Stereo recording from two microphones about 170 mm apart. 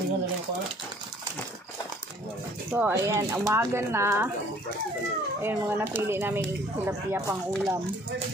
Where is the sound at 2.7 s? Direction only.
15° right (ahead or behind).